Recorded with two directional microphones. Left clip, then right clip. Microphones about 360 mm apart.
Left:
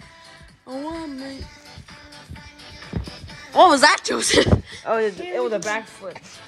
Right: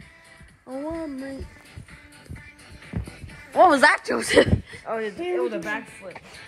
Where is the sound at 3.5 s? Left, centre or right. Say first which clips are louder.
Left 3 dB; centre.